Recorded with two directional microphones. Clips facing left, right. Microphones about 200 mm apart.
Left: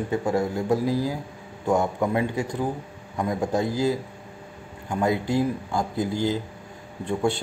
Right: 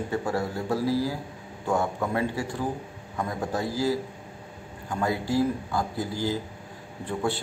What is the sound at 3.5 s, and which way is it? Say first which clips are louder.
Speech: left 2 dB; 20° left (ahead or behind).